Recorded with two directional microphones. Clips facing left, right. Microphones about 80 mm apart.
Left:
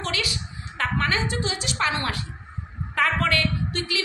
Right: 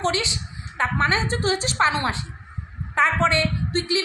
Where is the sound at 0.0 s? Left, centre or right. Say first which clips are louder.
Right 5 dB; right.